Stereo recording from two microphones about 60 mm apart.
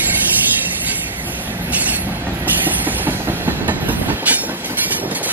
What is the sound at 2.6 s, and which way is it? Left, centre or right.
Train, right.